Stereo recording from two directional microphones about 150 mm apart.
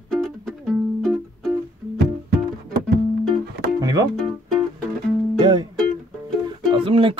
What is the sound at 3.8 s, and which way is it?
Music, 25° right (ahead or behind).